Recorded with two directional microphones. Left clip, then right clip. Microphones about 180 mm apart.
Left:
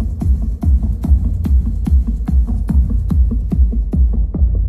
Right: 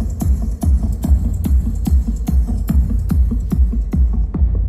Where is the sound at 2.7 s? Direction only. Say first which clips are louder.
Even; 30° right (ahead or behind).